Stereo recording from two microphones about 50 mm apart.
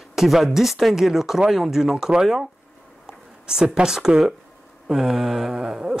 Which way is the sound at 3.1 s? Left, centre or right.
Centre.